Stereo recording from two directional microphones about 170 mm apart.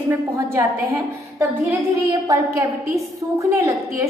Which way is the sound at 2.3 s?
20° right (ahead or behind).